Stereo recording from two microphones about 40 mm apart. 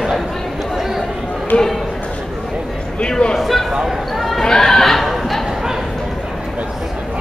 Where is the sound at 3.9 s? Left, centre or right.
Centre.